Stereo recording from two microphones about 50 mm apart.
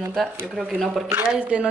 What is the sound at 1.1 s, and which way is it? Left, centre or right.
Speech, right.